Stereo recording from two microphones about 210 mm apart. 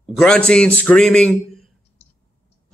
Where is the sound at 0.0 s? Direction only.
Centre (ahead or behind).